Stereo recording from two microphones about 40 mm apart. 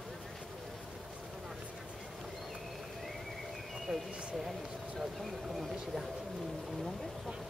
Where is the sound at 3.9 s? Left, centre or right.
Centre.